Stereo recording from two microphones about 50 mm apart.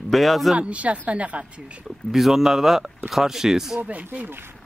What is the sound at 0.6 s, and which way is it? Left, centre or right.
Speech, right.